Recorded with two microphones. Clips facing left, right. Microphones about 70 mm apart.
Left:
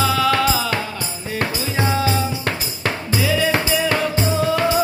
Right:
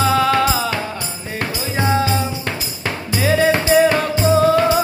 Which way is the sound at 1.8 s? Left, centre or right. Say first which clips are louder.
Right 2 dB; centre.